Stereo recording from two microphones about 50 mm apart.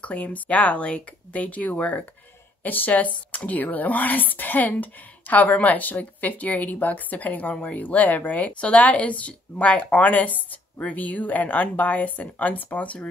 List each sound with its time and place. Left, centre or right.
0.0 s speech: left